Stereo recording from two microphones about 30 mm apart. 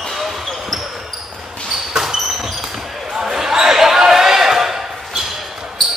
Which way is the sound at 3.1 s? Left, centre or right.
Centre.